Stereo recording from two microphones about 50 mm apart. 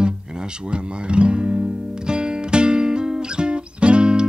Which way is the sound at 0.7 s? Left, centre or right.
Right.